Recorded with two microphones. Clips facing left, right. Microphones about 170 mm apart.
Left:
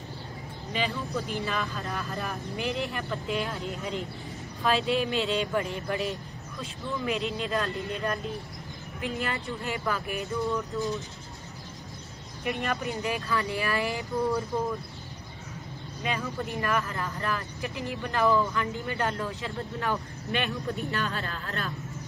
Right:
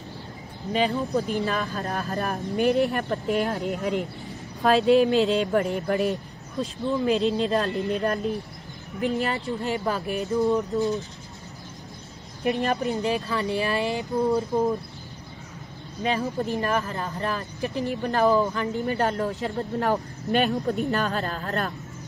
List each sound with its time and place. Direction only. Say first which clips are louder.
0.7 s speech: right 7 dB; 40° right (ahead or behind)
2.6 s speech: right 11 dB; 60° right (ahead or behind)
4.6 s speech: right 8 dB; 40° right (ahead or behind)
12.4 s speech: right 6 dB; 35° right (ahead or behind)
13.4 s speech: right 4 dB; 20° right (ahead or behind)
16.0 s speech: right 6 dB; 35° right (ahead or behind)